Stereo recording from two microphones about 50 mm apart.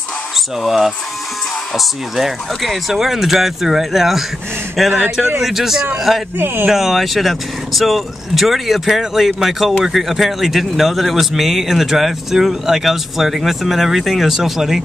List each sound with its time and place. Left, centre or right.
0.6 s speech: centre
6.3 s speech: right
6.7 s speech: centre